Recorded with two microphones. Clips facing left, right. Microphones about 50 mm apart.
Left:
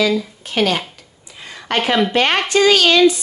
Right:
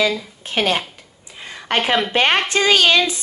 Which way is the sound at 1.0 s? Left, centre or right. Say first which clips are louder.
Right 1 dB; right.